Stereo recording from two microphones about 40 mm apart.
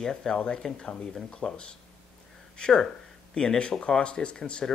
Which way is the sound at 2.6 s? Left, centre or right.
Centre.